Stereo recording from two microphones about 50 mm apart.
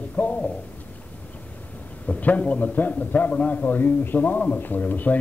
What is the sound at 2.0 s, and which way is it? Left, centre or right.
A man's voice, left.